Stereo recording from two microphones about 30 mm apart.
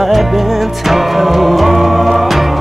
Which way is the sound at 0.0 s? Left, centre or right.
Centre.